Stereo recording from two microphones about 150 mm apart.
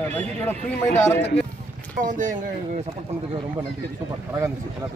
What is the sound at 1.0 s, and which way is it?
Speech, 10° left (ahead or behind).